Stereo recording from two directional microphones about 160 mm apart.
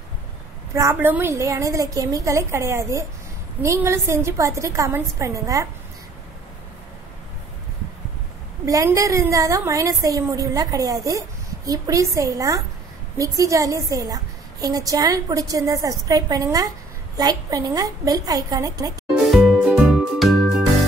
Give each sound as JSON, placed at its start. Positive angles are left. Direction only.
{"t": 0.7, "sound": "a woman's voice", "side_deg": -15}
{"t": 8.6, "sound": "a woman's voice", "side_deg": -20}
{"t": 19.3, "sound": "music", "side_deg": -5}